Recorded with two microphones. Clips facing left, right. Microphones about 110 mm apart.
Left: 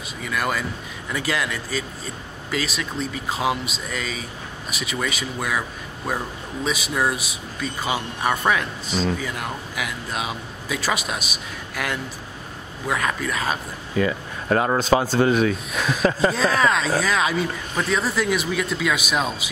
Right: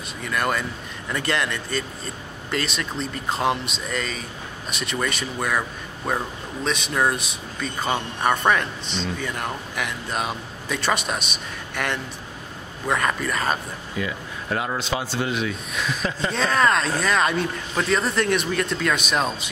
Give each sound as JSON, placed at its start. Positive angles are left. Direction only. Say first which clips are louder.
{"t": 0.2, "sound": "speech", "louder": "right 1 dB", "side_deg": 5}
{"t": 13.9, "sound": "speech", "louder": "left 7 dB", "side_deg": 50}
{"t": 16.3, "sound": "speech", "louder": "right 3 dB", "side_deg": 5}